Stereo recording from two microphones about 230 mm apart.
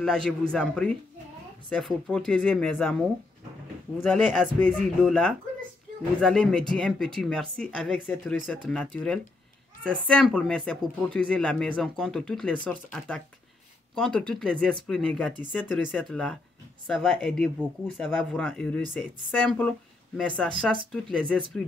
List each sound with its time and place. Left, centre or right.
0.0 s speech: centre
4.0 s speech: centre
6.2 s speech: centre
10.3 s speech: centre